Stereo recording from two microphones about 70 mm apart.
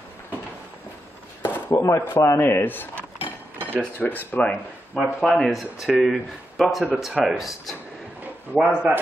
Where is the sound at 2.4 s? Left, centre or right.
Left.